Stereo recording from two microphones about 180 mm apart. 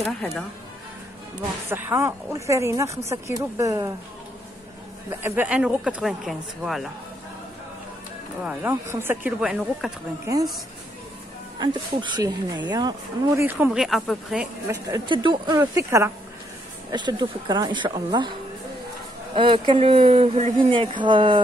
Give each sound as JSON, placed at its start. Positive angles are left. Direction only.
{"t": 0.0, "sound": "speech", "side_deg": 5}
{"t": 1.7, "sound": "speech", "side_deg": -15}
{"t": 5.2, "sound": "speech", "side_deg": -10}
{"t": 8.5, "sound": "speech", "side_deg": -10}
{"t": 11.6, "sound": "speech", "side_deg": -25}
{"t": 13.4, "sound": "speech", "side_deg": -10}
{"t": 14.7, "sound": "speech", "side_deg": -25}
{"t": 15.6, "sound": "speech", "side_deg": -15}
{"t": 19.3, "sound": "speech", "side_deg": -30}